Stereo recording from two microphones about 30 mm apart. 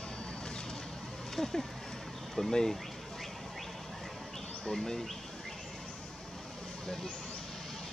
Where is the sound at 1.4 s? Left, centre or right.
Centre.